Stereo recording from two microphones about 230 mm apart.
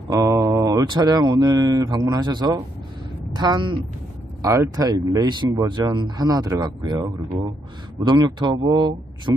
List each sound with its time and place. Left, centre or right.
0.1 s speech: centre